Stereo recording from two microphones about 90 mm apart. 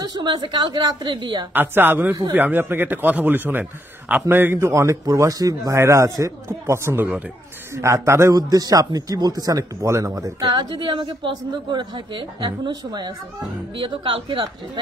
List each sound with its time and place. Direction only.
0.0 s a woman's voice: 60° right (ahead or behind)
1.5 s a man's voice: 20° right (ahead or behind)
8.4 s speech: 45° right (ahead or behind)
10.4 s a woman's voice: 55° right (ahead or behind)
13.7 s speech: 75° right (ahead or behind)